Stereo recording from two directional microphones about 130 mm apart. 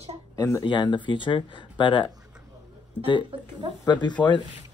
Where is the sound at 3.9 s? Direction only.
35° left (ahead or behind).